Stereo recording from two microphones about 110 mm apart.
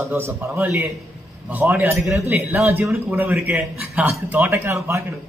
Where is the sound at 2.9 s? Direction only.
25° right (ahead or behind).